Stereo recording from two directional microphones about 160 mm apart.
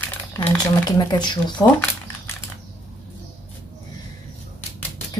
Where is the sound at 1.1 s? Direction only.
25° left (ahead or behind).